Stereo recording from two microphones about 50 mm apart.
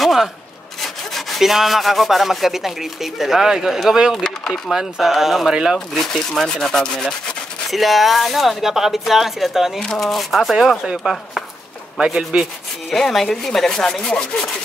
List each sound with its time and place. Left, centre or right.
0.0 s rub: centre
0.7 s wood: centre
1.4 s speech: centre
5.5 s speech: centre
5.9 s speech: centre
7.7 s speech: centre
9.8 s speech: centre
10.8 s speech: centre
12.9 s speech: centre